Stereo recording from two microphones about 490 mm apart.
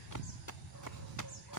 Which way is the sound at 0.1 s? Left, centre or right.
Left.